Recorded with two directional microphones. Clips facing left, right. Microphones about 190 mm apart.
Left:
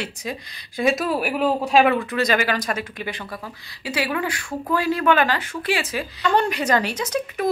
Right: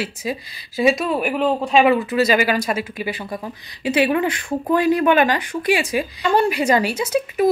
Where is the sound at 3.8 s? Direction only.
20° right (ahead or behind).